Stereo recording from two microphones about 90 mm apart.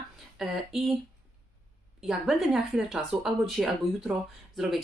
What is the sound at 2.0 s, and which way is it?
Speech, 5° right (ahead or behind).